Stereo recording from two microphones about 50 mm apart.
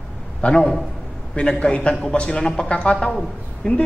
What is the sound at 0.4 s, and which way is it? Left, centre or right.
A man's voice, left.